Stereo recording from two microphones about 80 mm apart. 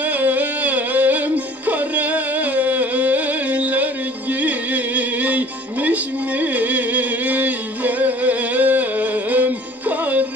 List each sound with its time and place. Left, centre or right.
0.0 s music: right